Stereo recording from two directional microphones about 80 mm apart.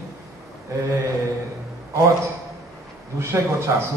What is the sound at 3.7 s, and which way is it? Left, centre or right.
Speech, right.